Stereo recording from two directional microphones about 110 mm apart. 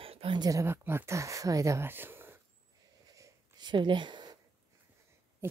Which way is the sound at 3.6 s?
45° right (ahead or behind).